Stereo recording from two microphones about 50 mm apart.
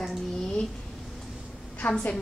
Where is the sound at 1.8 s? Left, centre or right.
Left.